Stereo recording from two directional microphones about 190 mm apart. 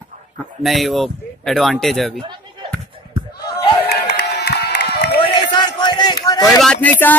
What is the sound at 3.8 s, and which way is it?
Crowd, 60° left (ahead or behind).